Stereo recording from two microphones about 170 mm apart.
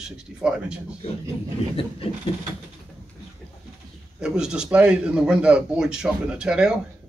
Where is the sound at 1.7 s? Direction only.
35° left (ahead or behind).